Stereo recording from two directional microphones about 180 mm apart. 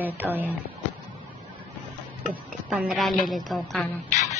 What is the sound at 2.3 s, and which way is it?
A woman's voice, centre (ahead or behind).